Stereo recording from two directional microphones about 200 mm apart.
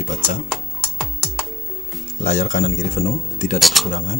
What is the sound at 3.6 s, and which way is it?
Speech, centre (ahead or behind).